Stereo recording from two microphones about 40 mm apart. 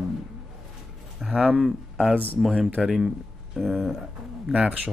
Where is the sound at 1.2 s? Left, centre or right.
Centre.